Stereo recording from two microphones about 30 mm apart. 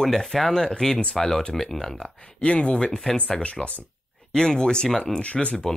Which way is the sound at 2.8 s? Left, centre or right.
Centre.